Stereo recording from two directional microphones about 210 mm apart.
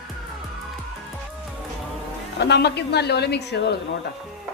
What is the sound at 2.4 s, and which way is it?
A woman's voice, 55° left (ahead or behind).